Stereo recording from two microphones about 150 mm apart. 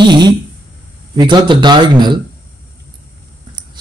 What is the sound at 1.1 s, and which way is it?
Speech, 30° right (ahead or behind).